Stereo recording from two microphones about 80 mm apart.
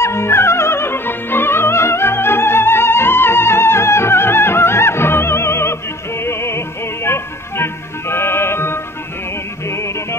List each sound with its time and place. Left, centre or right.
0.0 s music: left